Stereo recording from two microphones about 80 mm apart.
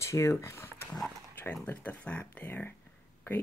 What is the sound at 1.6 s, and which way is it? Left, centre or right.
Speech, centre.